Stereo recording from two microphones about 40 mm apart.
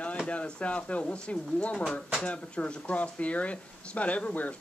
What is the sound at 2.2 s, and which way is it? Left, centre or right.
Speech, left.